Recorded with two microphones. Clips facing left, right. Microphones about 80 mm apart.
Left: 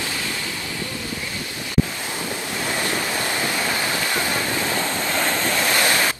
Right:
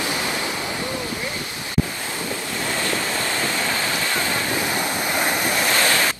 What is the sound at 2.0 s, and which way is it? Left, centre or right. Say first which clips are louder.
Waves: even; left.